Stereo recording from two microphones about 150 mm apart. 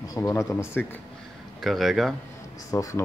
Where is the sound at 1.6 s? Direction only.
Centre (ahead or behind).